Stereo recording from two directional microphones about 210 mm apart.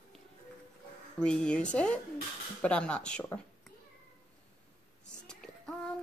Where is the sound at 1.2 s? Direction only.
5° left (ahead or behind).